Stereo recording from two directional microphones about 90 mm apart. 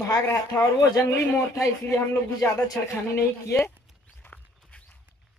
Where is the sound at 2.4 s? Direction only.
35° left (ahead or behind).